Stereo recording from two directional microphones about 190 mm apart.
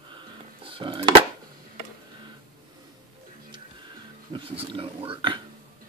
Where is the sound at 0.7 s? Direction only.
25° right (ahead or behind).